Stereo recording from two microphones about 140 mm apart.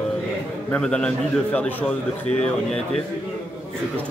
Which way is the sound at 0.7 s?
5° left (ahead or behind).